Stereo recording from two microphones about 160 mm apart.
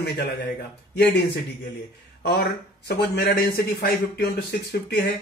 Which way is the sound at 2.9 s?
80° left.